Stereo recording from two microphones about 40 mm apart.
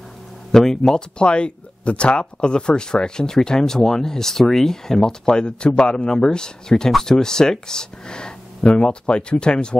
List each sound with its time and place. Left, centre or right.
0.5 s speech: centre